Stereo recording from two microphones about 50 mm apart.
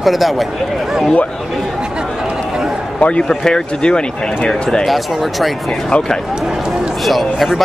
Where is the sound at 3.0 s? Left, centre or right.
Left.